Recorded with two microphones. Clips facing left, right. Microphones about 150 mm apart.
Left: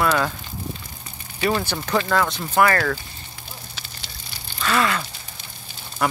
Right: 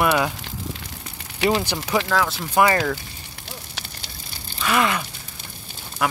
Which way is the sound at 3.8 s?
75° right (ahead or behind).